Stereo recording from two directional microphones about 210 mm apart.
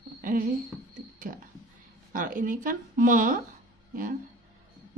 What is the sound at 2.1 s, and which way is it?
A woman's voice, 40° right (ahead or behind).